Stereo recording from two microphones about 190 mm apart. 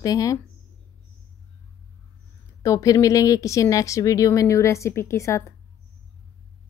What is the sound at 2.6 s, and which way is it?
Speech, 15° left (ahead or behind).